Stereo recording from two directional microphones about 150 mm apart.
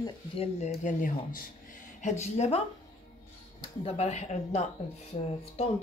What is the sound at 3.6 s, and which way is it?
Speech, 40° left (ahead or behind).